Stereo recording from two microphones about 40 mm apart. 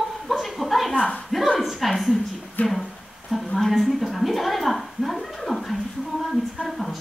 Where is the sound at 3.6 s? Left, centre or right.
Centre.